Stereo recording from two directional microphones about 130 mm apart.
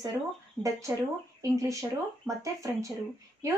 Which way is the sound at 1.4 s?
25° right (ahead or behind).